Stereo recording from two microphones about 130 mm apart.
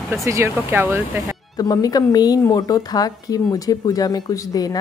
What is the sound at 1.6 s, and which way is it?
A woman's voice, 30° left (ahead or behind).